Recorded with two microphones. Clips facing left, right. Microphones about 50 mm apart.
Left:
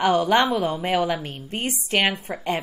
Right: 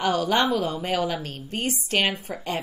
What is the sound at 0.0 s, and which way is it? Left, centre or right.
A woman's voice, left.